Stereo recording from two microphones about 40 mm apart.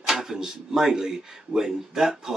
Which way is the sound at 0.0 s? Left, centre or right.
Centre.